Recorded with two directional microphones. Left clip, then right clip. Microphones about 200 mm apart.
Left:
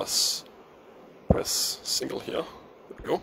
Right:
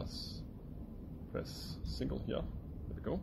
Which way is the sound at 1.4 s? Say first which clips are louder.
Left 19 dB; 30° left (ahead or behind).